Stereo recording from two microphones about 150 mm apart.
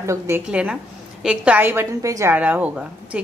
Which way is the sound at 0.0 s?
20° right (ahead or behind).